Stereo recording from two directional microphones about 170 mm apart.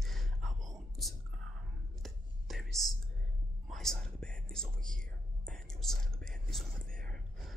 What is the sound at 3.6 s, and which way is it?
Speech, centre (ahead or behind).